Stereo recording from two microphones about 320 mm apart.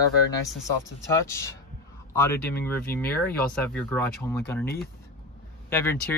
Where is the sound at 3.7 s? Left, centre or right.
Centre.